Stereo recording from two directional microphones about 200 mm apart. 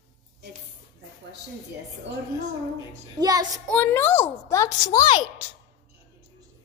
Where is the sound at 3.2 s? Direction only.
20° right (ahead or behind).